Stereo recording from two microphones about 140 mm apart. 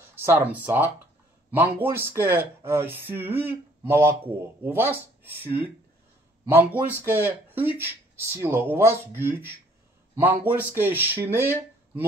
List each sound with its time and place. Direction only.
0.0 s speech: 15° right (ahead or behind)